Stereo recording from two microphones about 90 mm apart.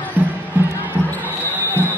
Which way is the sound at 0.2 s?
20° right (ahead or behind).